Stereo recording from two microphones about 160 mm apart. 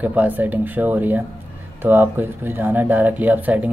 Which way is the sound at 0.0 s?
10° right (ahead or behind).